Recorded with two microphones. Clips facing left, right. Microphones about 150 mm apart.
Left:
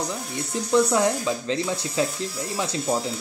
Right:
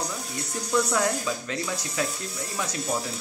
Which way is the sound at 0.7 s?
25° left (ahead or behind).